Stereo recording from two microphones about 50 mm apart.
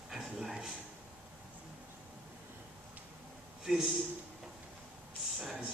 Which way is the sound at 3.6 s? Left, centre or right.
Centre.